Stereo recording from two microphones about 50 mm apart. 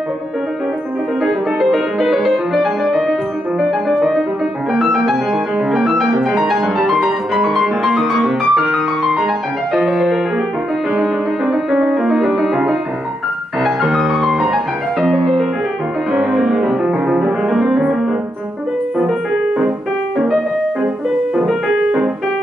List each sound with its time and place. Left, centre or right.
1.2 s music: centre
5.7 s piano: centre
6.2 s music: centre
8.2 s music: centre
13.6 s music: centre
16.1 s music: centre
17.5 s music: centre